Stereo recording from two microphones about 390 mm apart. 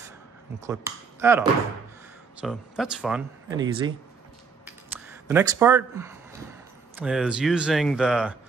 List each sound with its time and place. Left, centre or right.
0.6 s speech: centre
4.6 s a sound: centre
7.0 s speech: centre